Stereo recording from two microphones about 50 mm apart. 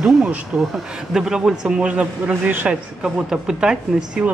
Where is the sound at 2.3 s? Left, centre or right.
Right.